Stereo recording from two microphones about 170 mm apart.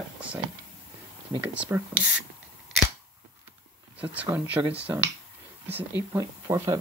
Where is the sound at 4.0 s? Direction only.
10° right (ahead or behind).